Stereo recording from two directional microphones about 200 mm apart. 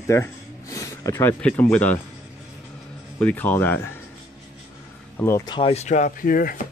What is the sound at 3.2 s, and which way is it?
Speech, 10° left (ahead or behind).